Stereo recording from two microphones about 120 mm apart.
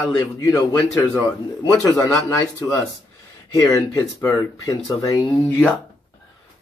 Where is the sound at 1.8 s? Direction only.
25° left (ahead or behind).